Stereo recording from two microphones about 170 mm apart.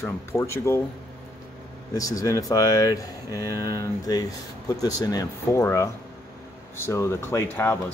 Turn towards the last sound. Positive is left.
turn(degrees=15)  # may be behind; listen again after turning